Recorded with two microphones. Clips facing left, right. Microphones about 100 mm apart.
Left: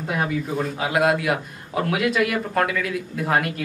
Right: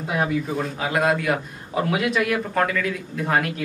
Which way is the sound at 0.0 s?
5° right (ahead or behind).